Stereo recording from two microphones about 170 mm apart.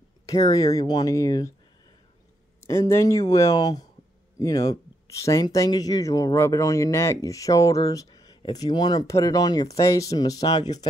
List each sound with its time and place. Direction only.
0.3 s speech: 20° left (ahead or behind)
2.6 s speech: 15° left (ahead or behind)